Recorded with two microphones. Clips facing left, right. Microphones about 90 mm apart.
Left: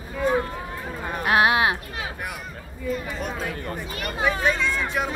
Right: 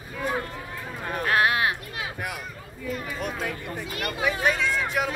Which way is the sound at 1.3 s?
20° left (ahead or behind).